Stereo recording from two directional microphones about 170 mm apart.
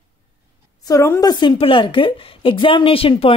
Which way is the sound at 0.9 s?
20° left (ahead or behind).